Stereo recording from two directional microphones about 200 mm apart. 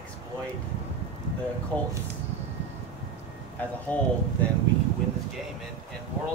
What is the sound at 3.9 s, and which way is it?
Speech, 5° left (ahead or behind).